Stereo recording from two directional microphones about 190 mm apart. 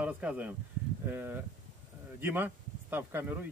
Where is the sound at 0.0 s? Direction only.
5° right (ahead or behind).